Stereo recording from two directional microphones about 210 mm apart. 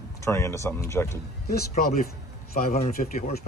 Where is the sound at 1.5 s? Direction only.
45° left (ahead or behind).